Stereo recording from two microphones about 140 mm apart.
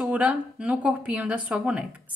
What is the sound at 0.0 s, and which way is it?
Speech, 10° right (ahead or behind).